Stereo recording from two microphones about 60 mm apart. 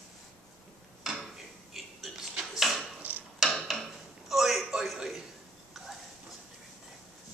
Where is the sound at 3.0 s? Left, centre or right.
Right.